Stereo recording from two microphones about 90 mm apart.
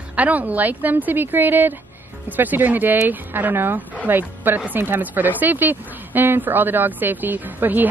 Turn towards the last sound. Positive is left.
turn(degrees=-20)  # may be behind; listen again after turning